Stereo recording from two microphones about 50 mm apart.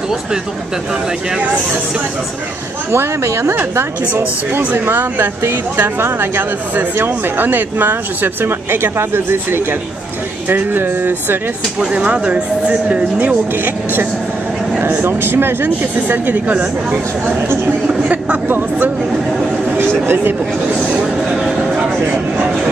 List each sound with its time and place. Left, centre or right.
2.9 s speech: right
4.8 s speech: right
11.8 s speech: right
14.8 s speech: right
17.8 s vehicle: right
20.1 s speech: right
20.9 s a sound: centre